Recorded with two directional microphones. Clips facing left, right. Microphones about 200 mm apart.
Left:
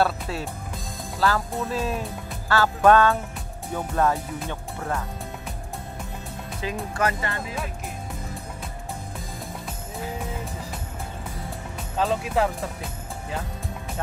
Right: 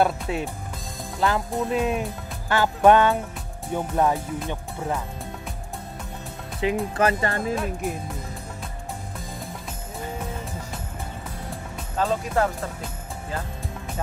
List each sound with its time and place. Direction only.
0.0 s speech: 20° right (ahead or behind)
6.6 s speech: 25° right (ahead or behind)
12.0 s speech: centre (ahead or behind)